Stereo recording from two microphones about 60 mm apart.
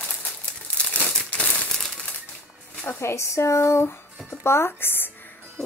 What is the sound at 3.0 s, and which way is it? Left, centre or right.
Speech, left.